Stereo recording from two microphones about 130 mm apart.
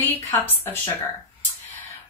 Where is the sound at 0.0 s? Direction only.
15° left (ahead or behind).